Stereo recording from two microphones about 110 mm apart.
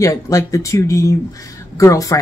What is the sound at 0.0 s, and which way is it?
Speech, 30° left (ahead or behind).